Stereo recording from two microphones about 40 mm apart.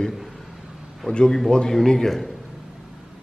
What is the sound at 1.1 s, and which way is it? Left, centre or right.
Speech, left.